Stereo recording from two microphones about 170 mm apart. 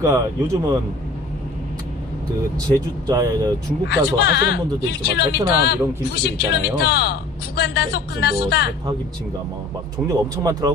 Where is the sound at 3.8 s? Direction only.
75° left (ahead or behind).